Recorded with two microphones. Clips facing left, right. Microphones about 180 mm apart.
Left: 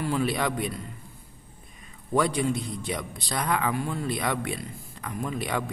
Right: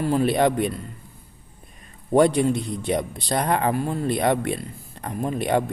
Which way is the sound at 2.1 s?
50° right (ahead or behind).